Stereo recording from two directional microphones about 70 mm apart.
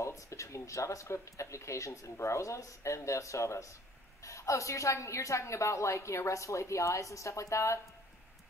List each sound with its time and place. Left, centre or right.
0.0 s speech: left